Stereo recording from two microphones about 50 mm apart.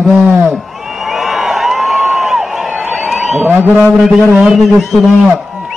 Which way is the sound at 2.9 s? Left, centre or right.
Centre.